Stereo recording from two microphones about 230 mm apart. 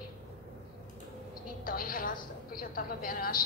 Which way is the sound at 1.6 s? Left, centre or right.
Left.